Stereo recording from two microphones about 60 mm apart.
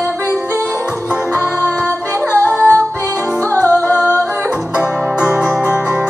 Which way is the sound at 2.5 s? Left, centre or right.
Right.